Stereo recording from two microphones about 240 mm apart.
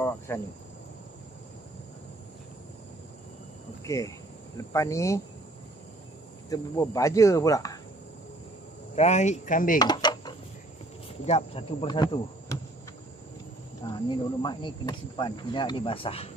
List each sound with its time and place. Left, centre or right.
0.3 s speech: centre
3.8 s speech: centre
6.5 s speech: centre
8.9 s speech: left
9.8 s a sound: centre
11.2 s speech: left
13.8 s speech: centre